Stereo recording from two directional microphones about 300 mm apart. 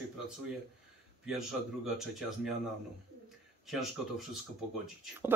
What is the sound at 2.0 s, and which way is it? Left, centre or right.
Speech, centre.